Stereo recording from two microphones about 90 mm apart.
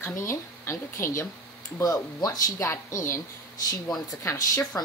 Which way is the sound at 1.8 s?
45° left (ahead or behind).